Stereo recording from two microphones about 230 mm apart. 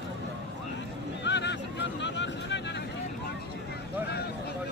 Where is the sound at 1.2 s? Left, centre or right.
Left.